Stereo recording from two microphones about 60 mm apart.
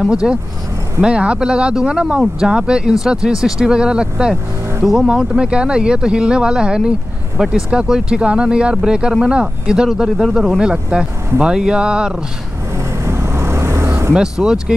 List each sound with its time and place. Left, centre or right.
0.0 s speech: centre
12.7 s vehicle: right
14.1 s speech: centre